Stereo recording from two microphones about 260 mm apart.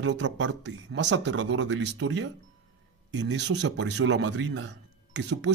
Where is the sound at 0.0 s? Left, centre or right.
Right.